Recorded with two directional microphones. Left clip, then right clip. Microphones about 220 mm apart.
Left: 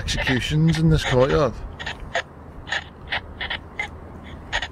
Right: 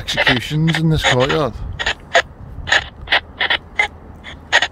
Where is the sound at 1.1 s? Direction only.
50° right (ahead or behind).